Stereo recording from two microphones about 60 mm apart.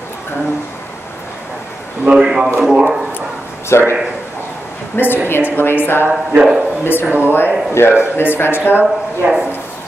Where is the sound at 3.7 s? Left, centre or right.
Left.